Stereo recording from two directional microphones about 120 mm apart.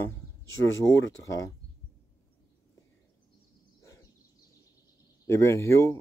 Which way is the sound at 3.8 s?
25° left (ahead or behind).